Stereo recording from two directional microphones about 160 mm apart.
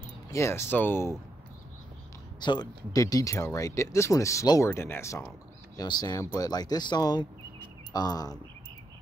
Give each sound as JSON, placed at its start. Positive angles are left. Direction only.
{"t": 0.3, "sound": "speech", "side_deg": 15}
{"t": 2.4, "sound": "speech", "side_deg": 25}